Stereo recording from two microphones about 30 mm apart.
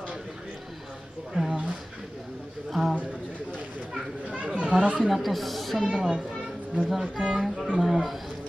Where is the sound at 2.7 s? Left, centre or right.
Centre.